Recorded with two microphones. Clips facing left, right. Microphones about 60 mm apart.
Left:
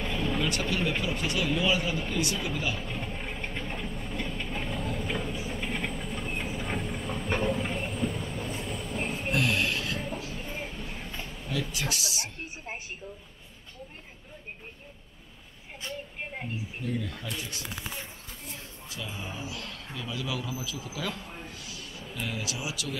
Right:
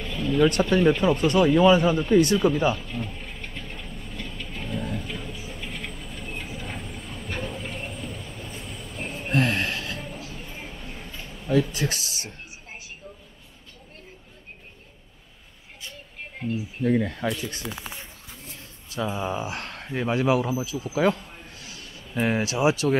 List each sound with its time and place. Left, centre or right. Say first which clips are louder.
0.0 s a sound: right 3 dB; left
0.5 s speech: right 9 dB; right
2.8 s vehicle: right 2 dB; left
5.5 s train: left 3 dB; left
8.4 s vehicle: left 3 dB; left
9.3 s a sound: right 4 dB; right
11.4 s speech: right 10 dB; right
16.2 s a sound: right 10 dB; centre
16.8 s speech: right 12 dB; right
19.1 s speech: right 9 dB; right
19.6 s speech: right 9 dB; right
21.5 s a sound: even; right
22.1 s speech: right 11 dB; right